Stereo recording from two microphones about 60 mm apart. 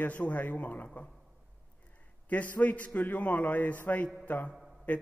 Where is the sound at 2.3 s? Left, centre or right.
Left.